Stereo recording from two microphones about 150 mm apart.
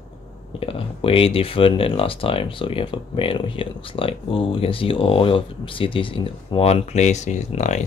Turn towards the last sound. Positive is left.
turn(degrees=50)  # may be behind; listen again after turning